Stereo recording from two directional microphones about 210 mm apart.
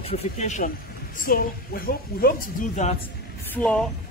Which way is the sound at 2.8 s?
35° left (ahead or behind).